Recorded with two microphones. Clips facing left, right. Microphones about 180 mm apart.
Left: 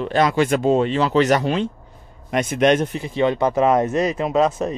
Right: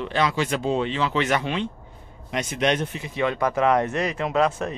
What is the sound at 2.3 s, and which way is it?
Speech, 55° left (ahead or behind).